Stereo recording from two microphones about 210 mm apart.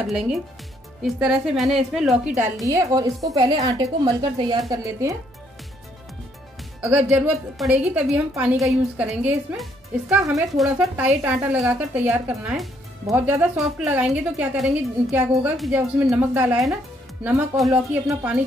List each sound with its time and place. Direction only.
0.0 s a woman's voice: centre (ahead or behind)
2.6 s a woman's voice: 15° right (ahead or behind)
6.8 s a woman's voice: 10° right (ahead or behind)